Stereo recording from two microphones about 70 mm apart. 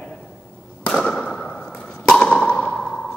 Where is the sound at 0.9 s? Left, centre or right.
Centre.